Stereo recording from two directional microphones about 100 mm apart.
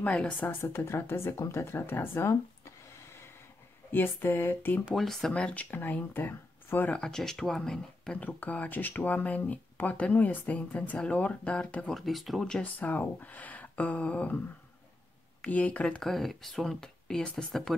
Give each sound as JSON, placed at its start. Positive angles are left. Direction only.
{"t": 0.0, "sound": "speech", "side_deg": 10}
{"t": 0.6, "sound": "speech", "side_deg": 25}
{"t": 3.9, "sound": "a sound", "side_deg": 20}
{"t": 4.9, "sound": "speech", "side_deg": 5}
{"t": 7.0, "sound": "speech", "side_deg": 5}
{"t": 11.9, "sound": "speech", "side_deg": 0}
{"t": 15.4, "sound": "speech", "side_deg": 15}